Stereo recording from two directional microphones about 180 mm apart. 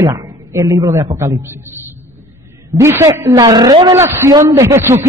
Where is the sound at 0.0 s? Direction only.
20° right (ahead or behind).